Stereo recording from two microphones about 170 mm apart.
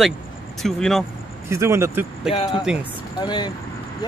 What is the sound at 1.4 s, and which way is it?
Speech, 15° right (ahead or behind).